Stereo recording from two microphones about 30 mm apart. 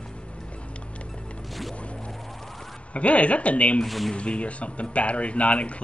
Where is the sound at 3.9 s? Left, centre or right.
Centre.